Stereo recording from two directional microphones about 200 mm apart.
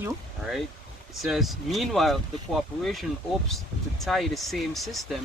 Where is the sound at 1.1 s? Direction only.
Centre (ahead or behind).